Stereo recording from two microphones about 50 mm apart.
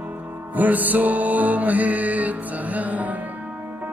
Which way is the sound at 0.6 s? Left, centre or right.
Right.